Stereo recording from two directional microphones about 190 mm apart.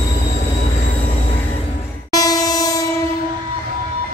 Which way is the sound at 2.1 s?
20° left (ahead or behind).